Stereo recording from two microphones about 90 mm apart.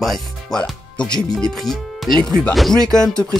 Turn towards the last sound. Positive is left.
turn(degrees=10)  # may be behind; listen again after turning